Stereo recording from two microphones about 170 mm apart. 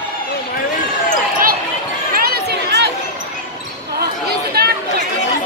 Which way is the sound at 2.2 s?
70° right (ahead or behind).